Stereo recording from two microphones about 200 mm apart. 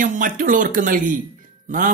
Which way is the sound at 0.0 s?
40° right (ahead or behind).